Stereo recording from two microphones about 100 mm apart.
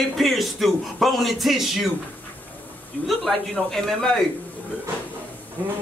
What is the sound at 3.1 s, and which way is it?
Speech, centre (ahead or behind).